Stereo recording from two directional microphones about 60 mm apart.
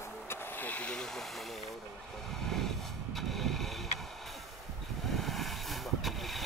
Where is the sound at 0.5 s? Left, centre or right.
Left.